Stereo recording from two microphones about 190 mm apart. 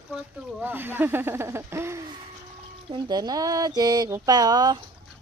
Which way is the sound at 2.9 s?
20° right (ahead or behind).